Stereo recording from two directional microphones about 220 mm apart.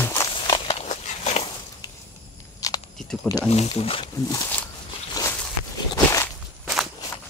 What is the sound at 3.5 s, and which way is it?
Speech, 25° left (ahead or behind).